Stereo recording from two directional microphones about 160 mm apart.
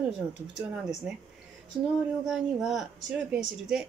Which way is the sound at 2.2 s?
Centre (ahead or behind).